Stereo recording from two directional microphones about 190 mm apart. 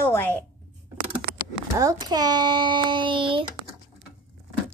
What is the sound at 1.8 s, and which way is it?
A child's voice, 20° right (ahead or behind).